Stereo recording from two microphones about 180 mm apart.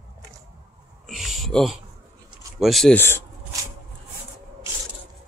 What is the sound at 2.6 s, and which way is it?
Speech, centre (ahead or behind).